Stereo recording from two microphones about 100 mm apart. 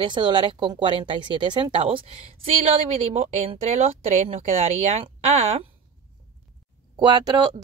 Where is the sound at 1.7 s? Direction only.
70° right (ahead or behind).